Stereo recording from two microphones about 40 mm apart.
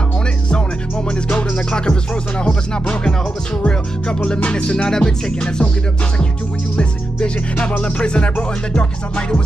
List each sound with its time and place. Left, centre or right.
1.3 s music: left
6.8 s music: left